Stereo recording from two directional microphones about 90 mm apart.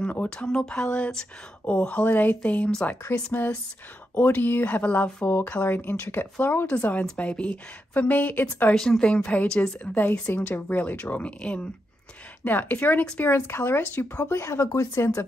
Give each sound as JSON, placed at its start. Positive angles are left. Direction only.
{"t": 0.0, "sound": "a woman's voice", "side_deg": 15}
{"t": 8.7, "sound": "a woman's voice", "side_deg": 5}